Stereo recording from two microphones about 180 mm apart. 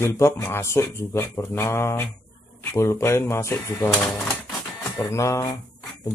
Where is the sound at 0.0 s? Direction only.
15° left (ahead or behind).